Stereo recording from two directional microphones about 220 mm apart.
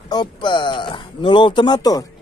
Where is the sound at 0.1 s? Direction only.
20° left (ahead or behind).